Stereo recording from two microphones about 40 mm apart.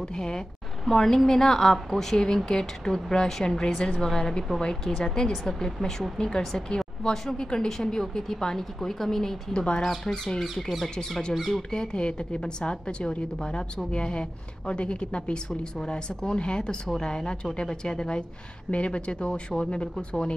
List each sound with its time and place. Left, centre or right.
0.1 s speech: centre
10.4 s speech: centre
11.7 s speech: left